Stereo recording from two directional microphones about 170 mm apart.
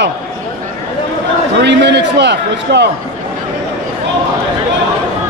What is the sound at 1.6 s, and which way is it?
A man's voice, 90° right.